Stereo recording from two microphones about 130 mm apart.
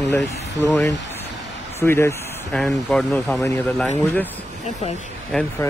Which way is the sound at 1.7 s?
20° left (ahead or behind).